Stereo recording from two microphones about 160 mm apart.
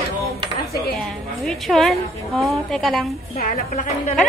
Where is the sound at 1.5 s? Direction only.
Centre (ahead or behind).